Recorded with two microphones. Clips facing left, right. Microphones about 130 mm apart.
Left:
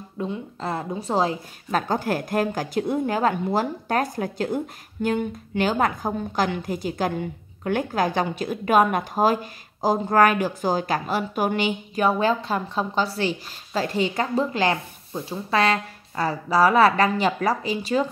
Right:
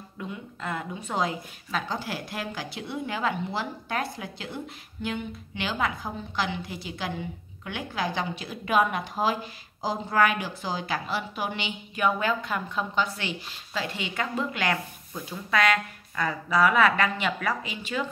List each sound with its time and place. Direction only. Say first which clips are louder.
0.2 s a woman's voice: left 7 dB; 30° left (ahead or behind)